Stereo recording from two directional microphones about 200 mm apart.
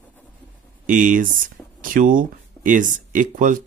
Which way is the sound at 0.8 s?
40° right (ahead or behind).